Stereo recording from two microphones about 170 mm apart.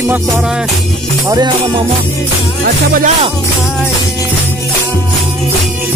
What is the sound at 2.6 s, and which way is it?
Speech, 55° right (ahead or behind).